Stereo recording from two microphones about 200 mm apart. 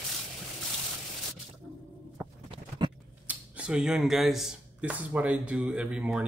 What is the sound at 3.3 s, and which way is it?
Speech, 5° right (ahead or behind).